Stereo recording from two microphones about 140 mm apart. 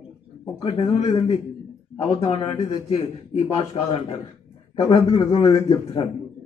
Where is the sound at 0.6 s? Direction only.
45° left (ahead or behind).